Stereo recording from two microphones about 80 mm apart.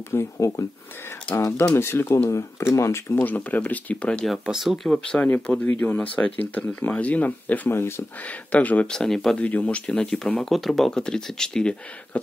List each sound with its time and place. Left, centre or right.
0.1 s speech: left
2.2 s speech: left
3.2 s speech: centre
4.3 s speech: centre
5.2 s speech: centre
9.0 s speech: centre
9.4 s speech: centre